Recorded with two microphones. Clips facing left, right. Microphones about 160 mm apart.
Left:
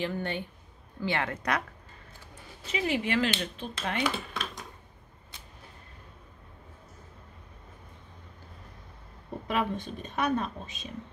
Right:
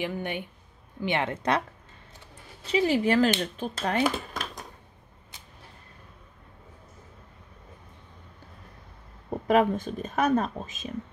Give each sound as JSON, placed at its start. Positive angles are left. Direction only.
{"t": 0.0, "sound": "speech", "side_deg": -15}
{"t": 2.6, "sound": "speech", "side_deg": -35}
{"t": 9.5, "sound": "speech", "side_deg": -45}